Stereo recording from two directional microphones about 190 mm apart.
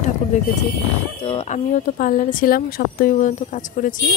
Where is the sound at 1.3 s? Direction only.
40° left (ahead or behind).